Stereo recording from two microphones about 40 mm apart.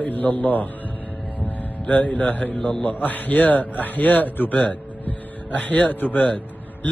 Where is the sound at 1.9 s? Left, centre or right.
Left.